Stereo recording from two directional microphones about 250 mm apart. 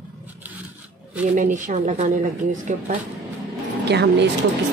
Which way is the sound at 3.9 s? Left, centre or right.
Right.